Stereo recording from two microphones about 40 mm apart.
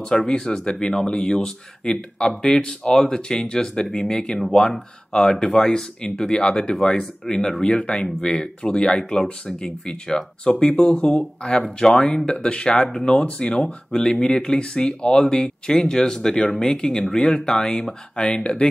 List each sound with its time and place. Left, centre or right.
0.3 s speech: left
8.9 s speech: centre
11.6 s speech: centre
12.9 s speech: centre